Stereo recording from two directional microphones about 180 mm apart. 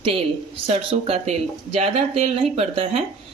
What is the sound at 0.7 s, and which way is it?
Speech, 35° right (ahead or behind).